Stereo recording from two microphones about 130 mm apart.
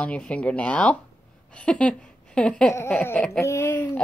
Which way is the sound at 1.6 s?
10° left (ahead or behind).